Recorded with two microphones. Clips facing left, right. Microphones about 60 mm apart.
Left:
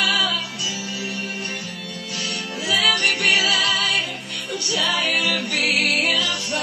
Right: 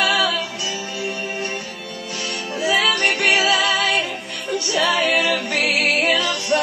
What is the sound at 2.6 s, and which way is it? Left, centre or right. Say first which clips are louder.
Music: right 2 dB; right.